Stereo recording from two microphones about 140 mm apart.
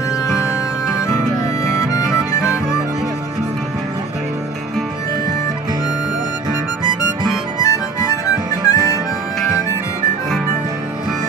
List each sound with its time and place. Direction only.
1.6 s harmonica: 25° left (ahead or behind)
7.6 s harmonica: 25° left (ahead or behind)